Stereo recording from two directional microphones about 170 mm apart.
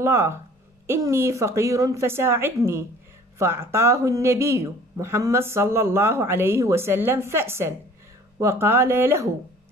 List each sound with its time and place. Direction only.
0.0 s speech: 15° right (ahead or behind)